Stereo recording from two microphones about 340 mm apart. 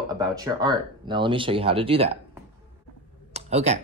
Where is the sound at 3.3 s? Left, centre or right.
Centre.